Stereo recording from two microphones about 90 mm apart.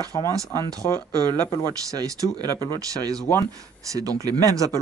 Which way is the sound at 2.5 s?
30° left (ahead or behind).